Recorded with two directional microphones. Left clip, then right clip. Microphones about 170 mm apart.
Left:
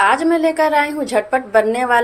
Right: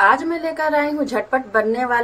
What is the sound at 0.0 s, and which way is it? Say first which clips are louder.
A woman's voice: left 2 dB; centre (ahead or behind).